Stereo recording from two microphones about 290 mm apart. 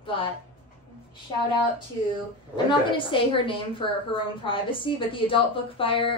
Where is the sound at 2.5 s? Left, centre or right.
Centre.